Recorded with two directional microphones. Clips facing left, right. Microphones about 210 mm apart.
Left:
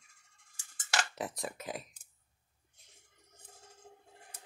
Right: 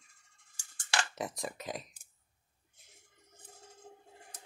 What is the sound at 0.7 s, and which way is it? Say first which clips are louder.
Cutlery: even; 5° left (ahead or behind).